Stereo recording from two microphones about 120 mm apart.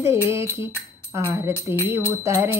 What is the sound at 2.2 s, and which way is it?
Music, 25° right (ahead or behind).